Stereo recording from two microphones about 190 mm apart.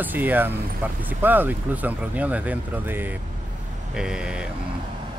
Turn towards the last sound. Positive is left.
turn(degrees=-5)  # may be behind; listen again after turning